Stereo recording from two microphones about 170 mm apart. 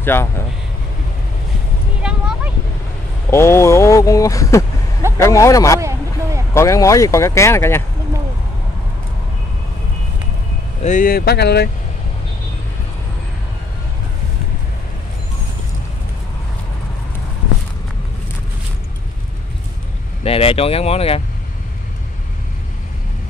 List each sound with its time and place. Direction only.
0.0 s speech: 15° left (ahead or behind)
2.0 s a sound: 5° right (ahead or behind)
3.3 s speech: 15° left (ahead or behind)
5.8 s a sound: 15° right (ahead or behind)
6.5 s speech: 15° left (ahead or behind)
10.8 s speech: 50° left (ahead or behind); by 11.7 s 75° left (ahead or behind)
20.2 s speech: 35° left (ahead or behind)